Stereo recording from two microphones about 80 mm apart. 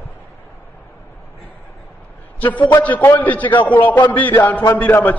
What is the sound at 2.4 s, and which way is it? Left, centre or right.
A man's voice, centre.